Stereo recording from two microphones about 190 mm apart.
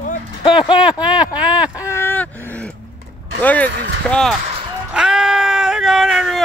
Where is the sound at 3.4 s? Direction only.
10° left (ahead or behind).